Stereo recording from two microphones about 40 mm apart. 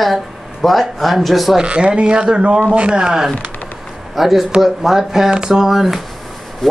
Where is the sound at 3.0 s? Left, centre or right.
Centre.